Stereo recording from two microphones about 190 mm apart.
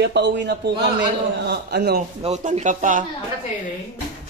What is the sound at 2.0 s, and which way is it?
Speech, 35° right (ahead or behind).